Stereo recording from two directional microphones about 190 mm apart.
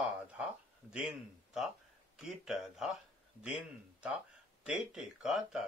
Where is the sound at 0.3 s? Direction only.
5° right (ahead or behind).